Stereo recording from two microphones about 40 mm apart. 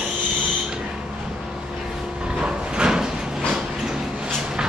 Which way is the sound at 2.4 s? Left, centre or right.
Centre.